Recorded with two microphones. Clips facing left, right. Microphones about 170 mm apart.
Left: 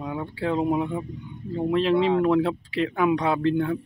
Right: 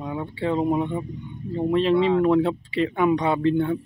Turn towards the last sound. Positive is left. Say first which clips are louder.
# right 2 dB
turn(degrees=0)  # may be behind; listen again after turning